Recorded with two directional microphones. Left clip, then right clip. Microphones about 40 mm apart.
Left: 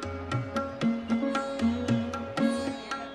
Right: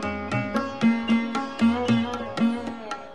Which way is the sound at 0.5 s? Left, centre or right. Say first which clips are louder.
Right 5 dB; left.